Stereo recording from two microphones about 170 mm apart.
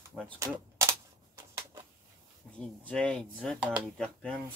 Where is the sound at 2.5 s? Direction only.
5° left (ahead or behind).